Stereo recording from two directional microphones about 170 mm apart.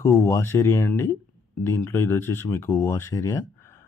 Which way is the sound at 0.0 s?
20° left (ahead or behind).